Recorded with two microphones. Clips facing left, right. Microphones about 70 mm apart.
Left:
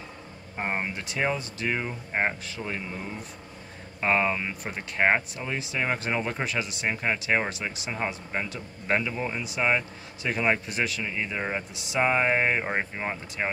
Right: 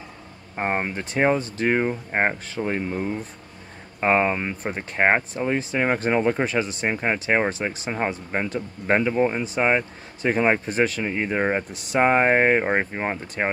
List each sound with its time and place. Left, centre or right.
0.6 s speech: right
1.0 s speech: right